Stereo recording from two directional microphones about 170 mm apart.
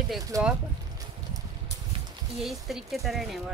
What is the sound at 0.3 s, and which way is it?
Speech, 20° right (ahead or behind).